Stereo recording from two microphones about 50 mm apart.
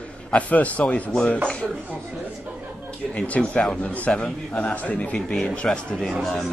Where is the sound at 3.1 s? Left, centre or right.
Left.